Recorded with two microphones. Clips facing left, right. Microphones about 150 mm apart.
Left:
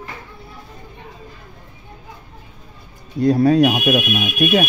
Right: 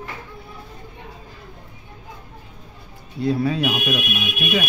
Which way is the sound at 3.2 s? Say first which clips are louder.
Left 8 dB; 45° left (ahead or behind).